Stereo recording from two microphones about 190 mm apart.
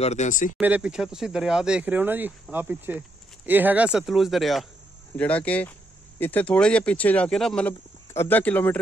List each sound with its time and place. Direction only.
0.0 s speech: 35° left (ahead or behind)
0.6 s speech: 10° right (ahead or behind); by 8.7 s 10° left (ahead or behind)